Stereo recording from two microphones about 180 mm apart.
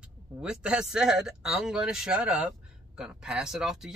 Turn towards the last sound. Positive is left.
turn(degrees=-5)  # may be behind; listen again after turning